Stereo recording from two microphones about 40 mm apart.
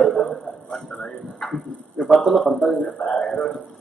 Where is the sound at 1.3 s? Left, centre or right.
Centre.